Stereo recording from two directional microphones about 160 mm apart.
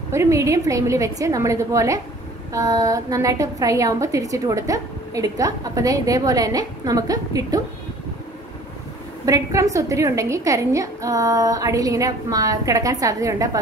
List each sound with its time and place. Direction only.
0.1 s a woman's voice: 20° right (ahead or behind)
9.2 s a woman's voice: 20° right (ahead or behind)